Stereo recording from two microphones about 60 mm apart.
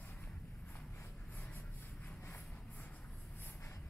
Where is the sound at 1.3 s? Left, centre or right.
Left.